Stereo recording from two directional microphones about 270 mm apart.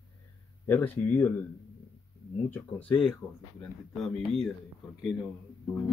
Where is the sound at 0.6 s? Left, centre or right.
Centre.